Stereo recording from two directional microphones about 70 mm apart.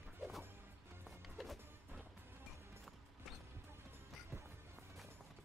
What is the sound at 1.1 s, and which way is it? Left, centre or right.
Music, centre.